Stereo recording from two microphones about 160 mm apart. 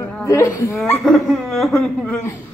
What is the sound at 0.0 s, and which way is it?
Speech, 10° left (ahead or behind).